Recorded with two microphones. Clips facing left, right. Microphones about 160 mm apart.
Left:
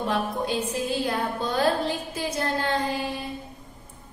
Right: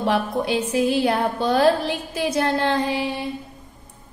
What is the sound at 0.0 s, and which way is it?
A woman's voice, 75° right (ahead or behind).